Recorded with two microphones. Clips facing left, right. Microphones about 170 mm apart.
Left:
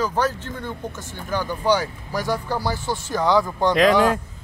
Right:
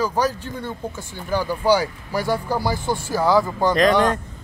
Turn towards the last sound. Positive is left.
turn(degrees=0)  # may be behind; listen again after turning